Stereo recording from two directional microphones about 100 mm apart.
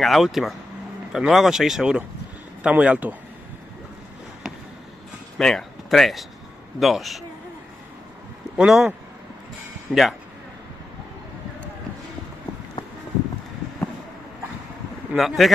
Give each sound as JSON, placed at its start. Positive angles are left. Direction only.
{"t": 0.0, "sound": "speech", "side_deg": 0}
{"t": 5.4, "sound": "speech", "side_deg": 5}
{"t": 8.5, "sound": "speech", "side_deg": -5}
{"t": 9.9, "sound": "speech", "side_deg": -20}
{"t": 15.1, "sound": "speech", "side_deg": 0}